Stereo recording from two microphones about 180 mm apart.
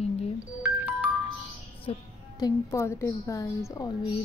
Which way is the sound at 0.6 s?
5° right (ahead or behind).